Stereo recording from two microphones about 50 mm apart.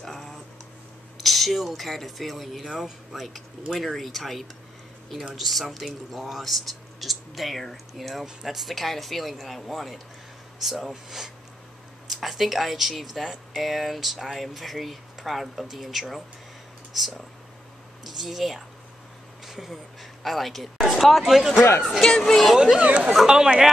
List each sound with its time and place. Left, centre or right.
0.0 s a sound: centre
1.2 s speech: centre
21.5 s speech: left
22.2 s speech: centre
22.8 s speech: right
23.1 s speech: centre